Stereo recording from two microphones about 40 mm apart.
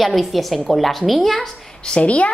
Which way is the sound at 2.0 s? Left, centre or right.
Left.